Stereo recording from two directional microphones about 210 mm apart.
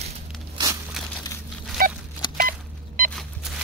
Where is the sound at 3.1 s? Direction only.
Centre (ahead or behind).